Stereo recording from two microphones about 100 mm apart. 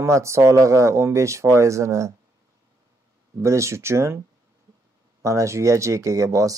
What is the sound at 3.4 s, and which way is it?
Speech, 30° right (ahead or behind).